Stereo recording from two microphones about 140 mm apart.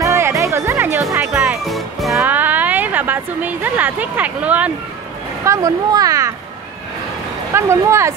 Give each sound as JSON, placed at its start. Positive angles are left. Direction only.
{"t": 0.0, "sound": "music", "side_deg": -20}
{"t": 2.1, "sound": "speech", "side_deg": -15}
{"t": 5.4, "sound": "speech", "side_deg": -20}
{"t": 7.5, "sound": "speech", "side_deg": -20}